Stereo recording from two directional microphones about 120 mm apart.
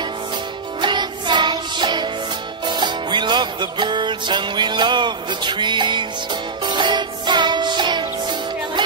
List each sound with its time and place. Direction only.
0.7 s music: 40° right (ahead or behind)